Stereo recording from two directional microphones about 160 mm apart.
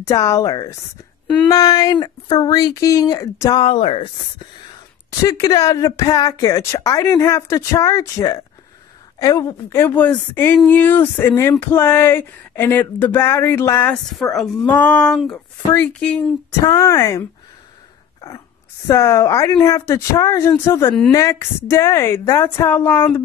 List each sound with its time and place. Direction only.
0.0 s speech: 20° left (ahead or behind)
3.6 s speech: 35° left (ahead or behind)
5.2 s speech: 20° left (ahead or behind)
14.1 s speech: centre (ahead or behind)
16.6 s speech: 20° left (ahead or behind)
18.9 s speech: 15° left (ahead or behind)